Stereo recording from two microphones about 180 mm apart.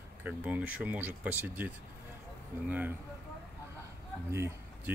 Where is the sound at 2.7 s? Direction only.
10° right (ahead or behind).